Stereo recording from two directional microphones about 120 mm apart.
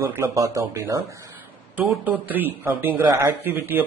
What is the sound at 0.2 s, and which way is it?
Speech, 25° right (ahead or behind).